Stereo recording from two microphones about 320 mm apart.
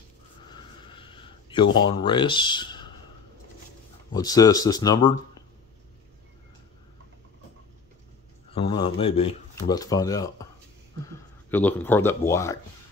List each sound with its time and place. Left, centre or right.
0.5 s a sound: centre
1.9 s speech: centre
4.1 s speech: centre
8.5 s speech: centre